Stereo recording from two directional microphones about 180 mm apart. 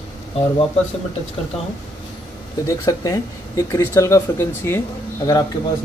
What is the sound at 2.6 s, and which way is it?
Speech, 20° left (ahead or behind).